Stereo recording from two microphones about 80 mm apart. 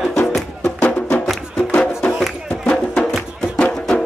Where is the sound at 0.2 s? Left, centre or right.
Centre.